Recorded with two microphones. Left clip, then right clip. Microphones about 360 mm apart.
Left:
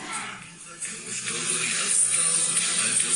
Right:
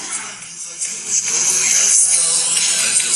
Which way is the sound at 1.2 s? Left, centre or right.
Centre.